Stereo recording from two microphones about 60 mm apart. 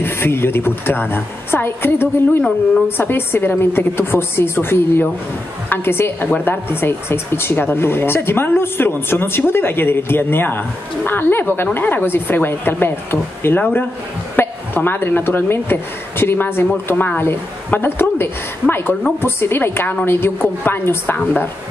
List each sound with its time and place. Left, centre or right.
0.0 s a woman's voice: left
6.3 s a woman's voice: left
6.7 s a woman's voice: left
16.9 s a woman's voice: left